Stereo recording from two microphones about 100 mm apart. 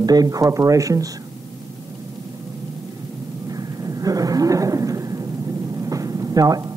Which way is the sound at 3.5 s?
35° right (ahead or behind).